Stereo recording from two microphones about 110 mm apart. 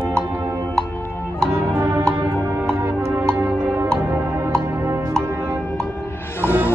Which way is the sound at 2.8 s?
20° right (ahead or behind).